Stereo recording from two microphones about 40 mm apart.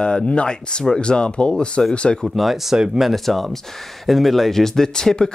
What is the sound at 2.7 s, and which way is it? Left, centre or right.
Speech, centre.